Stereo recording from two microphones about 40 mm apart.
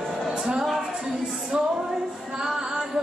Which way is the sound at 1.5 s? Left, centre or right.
Centre.